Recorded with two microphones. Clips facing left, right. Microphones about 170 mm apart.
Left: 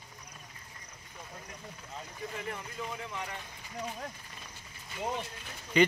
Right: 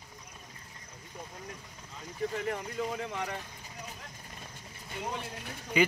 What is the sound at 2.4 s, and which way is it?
Speech, 50° right (ahead or behind).